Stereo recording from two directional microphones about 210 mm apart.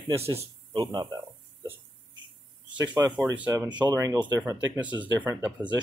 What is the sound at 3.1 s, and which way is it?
Speech, 5° right (ahead or behind).